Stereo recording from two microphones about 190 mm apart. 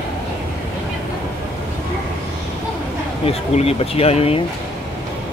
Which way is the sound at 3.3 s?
30° left (ahead or behind).